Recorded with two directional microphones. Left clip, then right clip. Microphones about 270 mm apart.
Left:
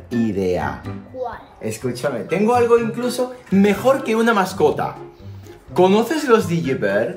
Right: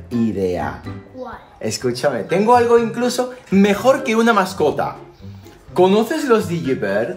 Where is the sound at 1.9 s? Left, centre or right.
Right.